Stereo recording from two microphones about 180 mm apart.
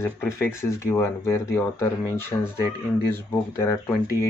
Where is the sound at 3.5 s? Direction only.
15° left (ahead or behind).